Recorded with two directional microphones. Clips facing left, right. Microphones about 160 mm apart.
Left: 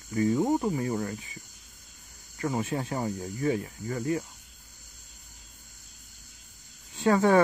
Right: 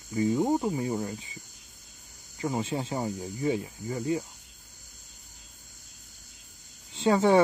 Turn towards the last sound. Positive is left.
turn(degrees=-20)  # may be behind; listen again after turning